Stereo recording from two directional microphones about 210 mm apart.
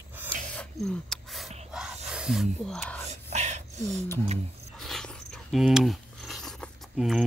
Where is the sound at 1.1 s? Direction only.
Centre (ahead or behind).